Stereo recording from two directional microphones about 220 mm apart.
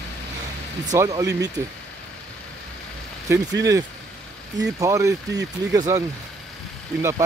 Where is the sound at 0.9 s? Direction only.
15° right (ahead or behind).